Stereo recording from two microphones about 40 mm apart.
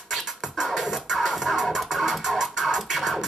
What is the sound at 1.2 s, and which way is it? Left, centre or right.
Scratching, centre.